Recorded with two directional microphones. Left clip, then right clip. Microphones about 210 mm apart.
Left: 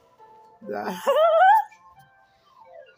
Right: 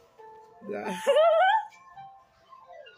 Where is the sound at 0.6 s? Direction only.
5° left (ahead or behind).